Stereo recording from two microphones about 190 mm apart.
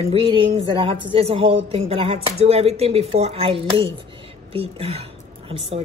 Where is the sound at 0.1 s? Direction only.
30° right (ahead or behind).